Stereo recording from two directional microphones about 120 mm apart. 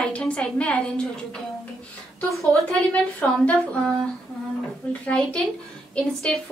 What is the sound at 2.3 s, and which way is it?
Speech, centre (ahead or behind).